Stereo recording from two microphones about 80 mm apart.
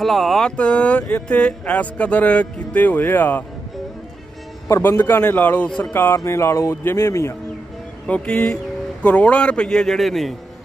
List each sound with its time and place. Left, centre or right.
0.0 s speech: centre
0.6 s speech: centre
4.6 s speech: left
5.9 s speech: left
8.3 s a man's voice: centre